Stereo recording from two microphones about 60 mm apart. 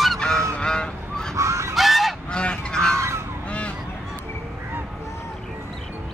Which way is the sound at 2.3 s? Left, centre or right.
Centre.